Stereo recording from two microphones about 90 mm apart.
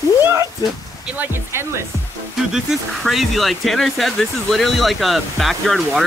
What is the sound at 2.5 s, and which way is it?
Speech, 5° right (ahead or behind).